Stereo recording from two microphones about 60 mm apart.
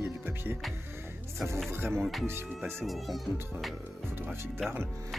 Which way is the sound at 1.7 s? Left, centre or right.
Right.